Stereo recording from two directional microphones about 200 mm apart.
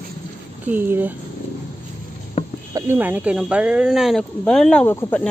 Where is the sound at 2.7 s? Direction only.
10° right (ahead or behind).